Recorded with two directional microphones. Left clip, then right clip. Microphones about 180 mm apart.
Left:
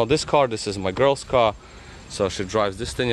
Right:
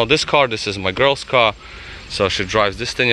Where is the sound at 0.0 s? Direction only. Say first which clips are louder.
Right 4 dB; 15° left (ahead or behind).